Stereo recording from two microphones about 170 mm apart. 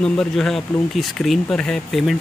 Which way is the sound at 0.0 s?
5° left (ahead or behind).